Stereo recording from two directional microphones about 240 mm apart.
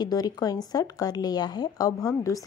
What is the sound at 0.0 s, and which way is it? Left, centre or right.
Speech, centre.